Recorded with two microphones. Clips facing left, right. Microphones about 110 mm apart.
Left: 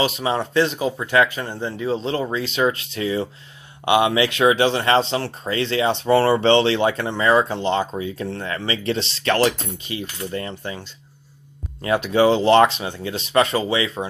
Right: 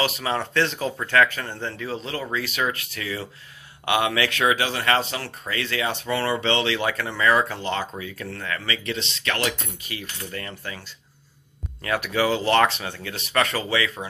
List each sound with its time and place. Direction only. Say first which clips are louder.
0.0 s speech: left 4 dB; 20° left (ahead or behind)
9.8 s speech: left 7 dB; 25° left (ahead or behind)